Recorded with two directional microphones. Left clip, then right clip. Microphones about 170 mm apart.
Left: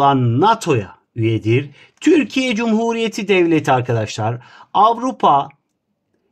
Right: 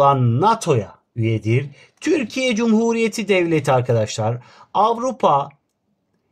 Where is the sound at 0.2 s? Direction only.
35° left (ahead or behind).